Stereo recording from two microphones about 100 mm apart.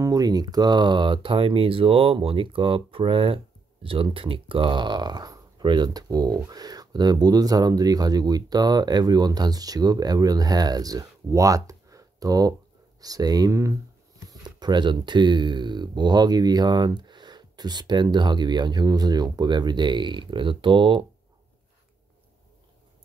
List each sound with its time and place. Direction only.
0.0 s speech: 40° right (ahead or behind)
14.3 s speech: 45° right (ahead or behind)